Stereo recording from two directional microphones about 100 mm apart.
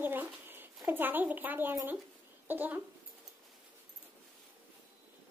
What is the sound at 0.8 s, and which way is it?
A woman's voice, 20° right (ahead or behind).